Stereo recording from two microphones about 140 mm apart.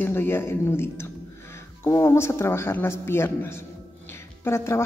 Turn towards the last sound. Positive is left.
turn(degrees=20)  # may be behind; listen again after turning